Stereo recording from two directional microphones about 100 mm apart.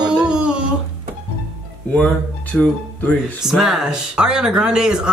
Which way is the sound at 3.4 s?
Centre (ahead or behind).